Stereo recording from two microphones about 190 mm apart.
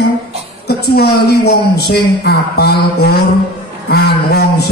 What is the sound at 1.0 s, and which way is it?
A man's voice, 60° left (ahead or behind).